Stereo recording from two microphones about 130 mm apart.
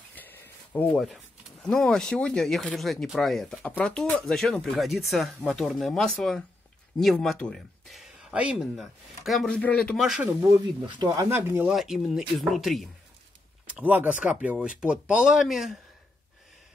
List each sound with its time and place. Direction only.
0.1 s a sound: 15° left (ahead or behind)
0.9 s speech: centre (ahead or behind)
9.9 s speech: 5° right (ahead or behind)
10.2 s speech: 20° right (ahead or behind)
10.9 s speech: 30° right (ahead or behind)
11.2 s speech: 20° right (ahead or behind)
11.6 s speech: 5° right (ahead or behind)
13.7 s speech: 10° right (ahead or behind)